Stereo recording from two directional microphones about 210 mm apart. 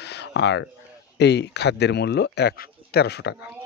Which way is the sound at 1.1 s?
55° left (ahead or behind).